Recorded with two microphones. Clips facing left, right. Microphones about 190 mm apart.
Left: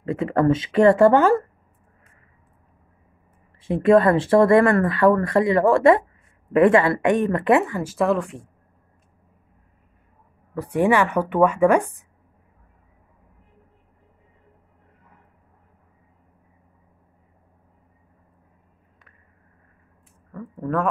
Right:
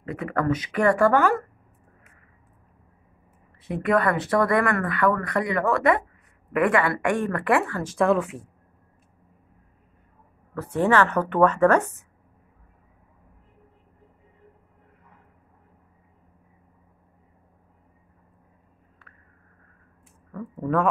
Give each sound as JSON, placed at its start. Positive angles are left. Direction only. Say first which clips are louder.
{"t": 0.0, "sound": "speech", "louder": "left 6 dB", "side_deg": 25}
{"t": 3.6, "sound": "speech", "louder": "left 7 dB", "side_deg": 25}
{"t": 10.5, "sound": "speech", "louder": "left 2 dB", "side_deg": 15}
{"t": 20.2, "sound": "a sound", "louder": "even", "side_deg": 0}